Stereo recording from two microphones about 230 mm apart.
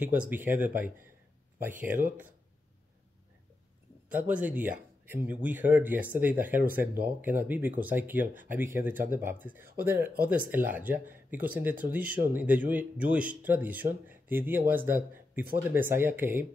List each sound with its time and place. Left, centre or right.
0.0 s speech: centre
4.1 s speech: centre